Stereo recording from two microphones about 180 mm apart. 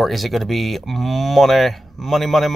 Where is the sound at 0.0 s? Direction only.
Centre (ahead or behind).